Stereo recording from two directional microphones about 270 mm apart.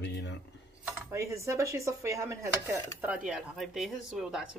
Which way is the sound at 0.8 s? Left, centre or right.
Centre.